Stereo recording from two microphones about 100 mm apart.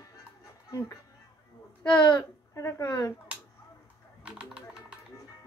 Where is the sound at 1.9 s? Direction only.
45° left (ahead or behind).